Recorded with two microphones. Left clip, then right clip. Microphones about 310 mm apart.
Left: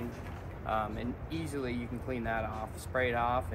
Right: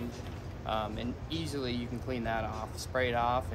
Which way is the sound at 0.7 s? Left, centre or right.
Centre.